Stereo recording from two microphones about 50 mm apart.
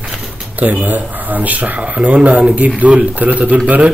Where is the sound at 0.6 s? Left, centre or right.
Right.